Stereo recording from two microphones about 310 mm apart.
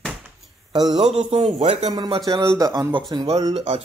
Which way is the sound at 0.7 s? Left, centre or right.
Centre.